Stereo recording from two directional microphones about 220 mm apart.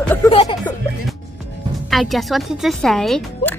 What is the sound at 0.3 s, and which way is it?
Music, 25° left (ahead or behind).